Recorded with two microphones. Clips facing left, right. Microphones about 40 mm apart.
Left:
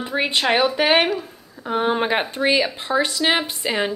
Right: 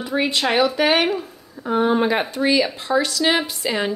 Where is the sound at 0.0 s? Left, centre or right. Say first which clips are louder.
Even; left.